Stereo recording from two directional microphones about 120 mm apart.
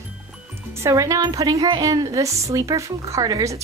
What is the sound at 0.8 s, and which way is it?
A woman's voice, 25° right (ahead or behind).